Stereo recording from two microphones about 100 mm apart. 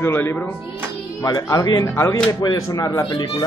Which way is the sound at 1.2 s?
35° left (ahead or behind).